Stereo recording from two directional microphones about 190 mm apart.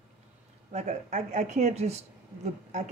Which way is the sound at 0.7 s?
40° right (ahead or behind).